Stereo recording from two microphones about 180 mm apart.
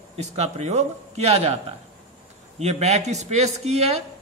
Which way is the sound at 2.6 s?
35° right (ahead or behind).